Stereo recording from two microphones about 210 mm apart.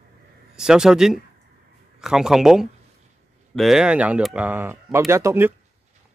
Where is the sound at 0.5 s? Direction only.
5° right (ahead or behind).